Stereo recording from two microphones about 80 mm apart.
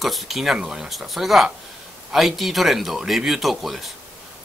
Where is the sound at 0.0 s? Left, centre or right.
Centre.